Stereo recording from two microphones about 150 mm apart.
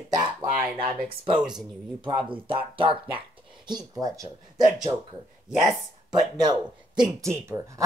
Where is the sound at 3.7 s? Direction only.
25° right (ahead or behind).